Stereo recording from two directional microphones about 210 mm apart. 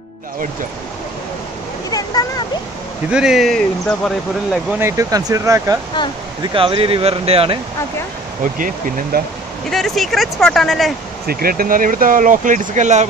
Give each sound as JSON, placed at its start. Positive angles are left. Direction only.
{"t": 1.9, "sound": "speech", "side_deg": 15}
{"t": 3.1, "sound": "speech", "side_deg": -5}
{"t": 4.7, "sound": "speech", "side_deg": -15}
{"t": 6.0, "sound": "speech", "side_deg": 20}
{"t": 6.5, "sound": "speech", "side_deg": -25}
{"t": 8.5, "sound": "speech", "side_deg": -40}
{"t": 9.7, "sound": "speech", "side_deg": 0}
{"t": 11.2, "sound": "speech", "side_deg": -45}